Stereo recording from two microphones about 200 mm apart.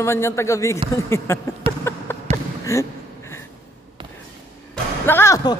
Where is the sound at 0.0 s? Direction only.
15° left (ahead or behind).